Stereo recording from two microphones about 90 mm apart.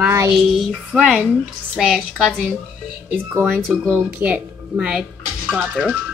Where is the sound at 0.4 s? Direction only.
5° right (ahead or behind).